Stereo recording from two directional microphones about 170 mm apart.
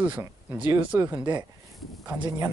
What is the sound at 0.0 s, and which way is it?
Speech, 10° right (ahead or behind).